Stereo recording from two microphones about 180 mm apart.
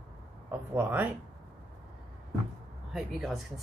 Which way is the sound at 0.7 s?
10° right (ahead or behind).